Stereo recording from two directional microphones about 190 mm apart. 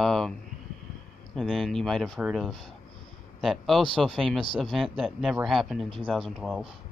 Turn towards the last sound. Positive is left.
turn(degrees=0)  # may be behind; listen again after turning